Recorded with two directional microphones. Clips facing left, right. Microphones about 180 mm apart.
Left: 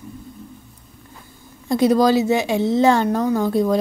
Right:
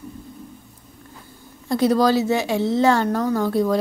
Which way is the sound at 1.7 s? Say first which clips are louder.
Left 2 dB; 15° left (ahead or behind).